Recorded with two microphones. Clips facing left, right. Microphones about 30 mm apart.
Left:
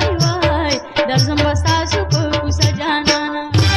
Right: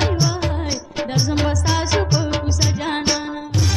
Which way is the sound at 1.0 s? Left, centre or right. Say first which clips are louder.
Left 5 dB; left.